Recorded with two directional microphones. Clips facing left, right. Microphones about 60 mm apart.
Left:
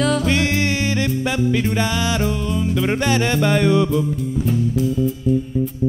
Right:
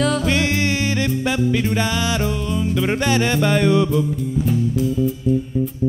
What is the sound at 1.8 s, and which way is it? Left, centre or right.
Music, left.